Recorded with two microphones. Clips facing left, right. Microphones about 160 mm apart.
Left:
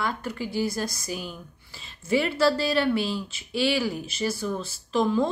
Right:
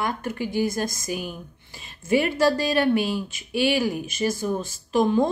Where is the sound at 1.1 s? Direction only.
15° right (ahead or behind).